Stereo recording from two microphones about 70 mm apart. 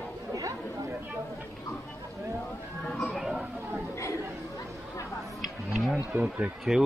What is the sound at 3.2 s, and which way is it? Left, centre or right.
Chatter, centre.